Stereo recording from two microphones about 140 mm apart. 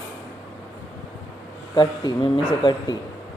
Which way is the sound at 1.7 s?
30° left (ahead or behind).